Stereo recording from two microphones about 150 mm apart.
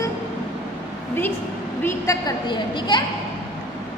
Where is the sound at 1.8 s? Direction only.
25° left (ahead or behind).